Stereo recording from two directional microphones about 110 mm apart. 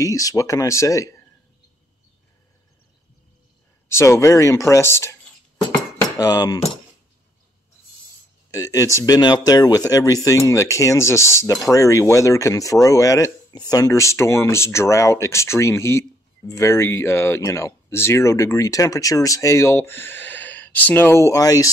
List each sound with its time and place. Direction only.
0.0 s speech: 30° left (ahead or behind)
3.9 s speech: 25° left (ahead or behind)
6.1 s speech: 35° left (ahead or behind)
8.5 s speech: 30° left (ahead or behind)